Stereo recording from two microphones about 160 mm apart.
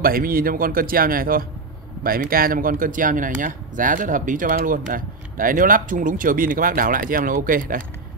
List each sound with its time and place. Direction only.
0.0 s speech: 65° right (ahead or behind)